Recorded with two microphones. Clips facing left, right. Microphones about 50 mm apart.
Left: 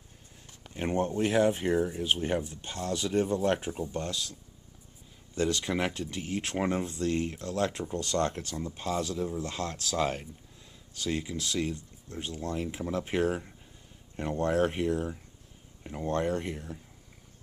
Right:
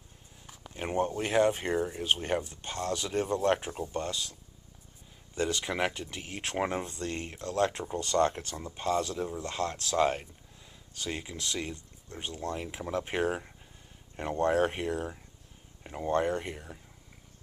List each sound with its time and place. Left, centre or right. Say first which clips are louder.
0.7 s speech: left 1 dB; centre
5.3 s speech: left 2 dB; centre